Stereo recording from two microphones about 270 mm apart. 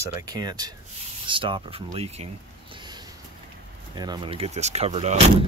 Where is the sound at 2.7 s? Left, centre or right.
Centre.